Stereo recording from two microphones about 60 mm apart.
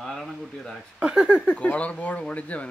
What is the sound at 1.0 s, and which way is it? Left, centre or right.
Speech, centre.